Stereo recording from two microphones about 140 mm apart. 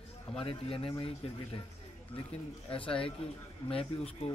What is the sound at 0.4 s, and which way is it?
Speech, 40° left (ahead or behind).